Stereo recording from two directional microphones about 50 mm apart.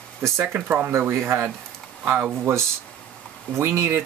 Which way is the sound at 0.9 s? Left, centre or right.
Right.